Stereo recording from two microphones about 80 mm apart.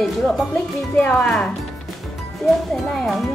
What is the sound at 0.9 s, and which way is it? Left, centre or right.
Speech, centre.